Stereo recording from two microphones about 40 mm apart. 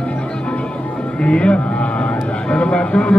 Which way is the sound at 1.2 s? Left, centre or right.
Left.